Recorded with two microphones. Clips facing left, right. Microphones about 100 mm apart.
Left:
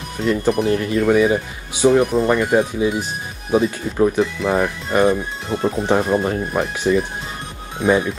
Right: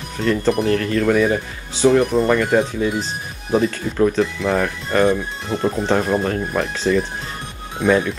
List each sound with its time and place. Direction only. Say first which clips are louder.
0.2 s speech: even; 15° left (ahead or behind)
2.0 s speech: even; centre (ahead or behind)
4.2 s speech: left 1 dB; centre (ahead or behind)
5.9 s speech: left 2 dB; 15° left (ahead or behind)